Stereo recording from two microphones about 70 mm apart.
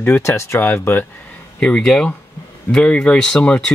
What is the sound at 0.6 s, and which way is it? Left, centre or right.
Speech, left.